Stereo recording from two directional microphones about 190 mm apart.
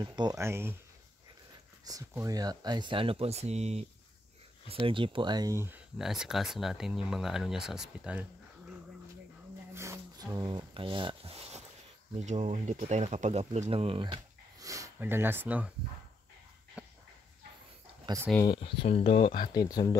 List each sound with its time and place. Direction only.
0.0 s speech: 25° right (ahead or behind)
1.9 s speech: 20° right (ahead or behind)
5.9 s speech: centre (ahead or behind)
9.8 s a sound: 15° right (ahead or behind)
12.3 s speech: 35° right (ahead or behind); by 15.7 s 10° right (ahead or behind)
16.8 s a sound: 5° right (ahead or behind)
18.0 s speech: 15° right (ahead or behind)
18.4 s speech: 25° left (ahead or behind)